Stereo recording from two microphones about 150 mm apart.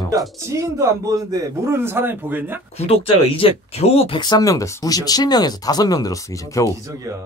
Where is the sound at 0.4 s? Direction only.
20° right (ahead or behind).